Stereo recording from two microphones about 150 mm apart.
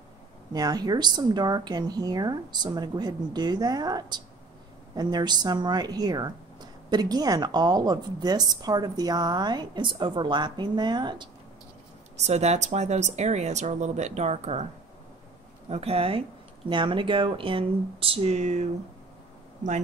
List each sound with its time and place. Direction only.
0.5 s a woman's voice: 25° right (ahead or behind)
12.2 s speech: 50° right (ahead or behind)
15.7 s speech: 40° right (ahead or behind)